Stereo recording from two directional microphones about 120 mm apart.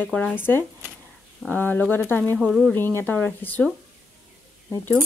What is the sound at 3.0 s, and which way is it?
Speech, 15° left (ahead or behind).